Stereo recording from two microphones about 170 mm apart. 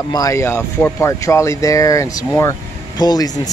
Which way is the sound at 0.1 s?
20° left (ahead or behind).